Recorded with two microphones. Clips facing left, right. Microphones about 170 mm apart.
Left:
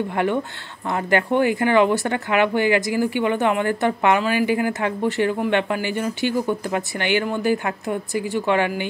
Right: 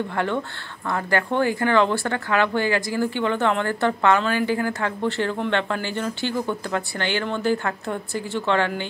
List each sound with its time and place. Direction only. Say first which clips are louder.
0.1 s speech: left 3 dB; 15° left (ahead or behind)